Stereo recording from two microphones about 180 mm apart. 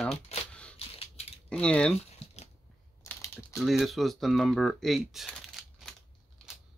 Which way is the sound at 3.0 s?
15° left (ahead or behind).